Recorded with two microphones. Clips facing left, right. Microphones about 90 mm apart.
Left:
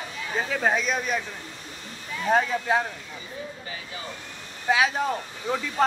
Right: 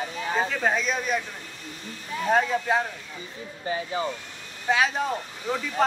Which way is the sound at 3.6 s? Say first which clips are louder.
Right 9 dB; 35° right (ahead or behind).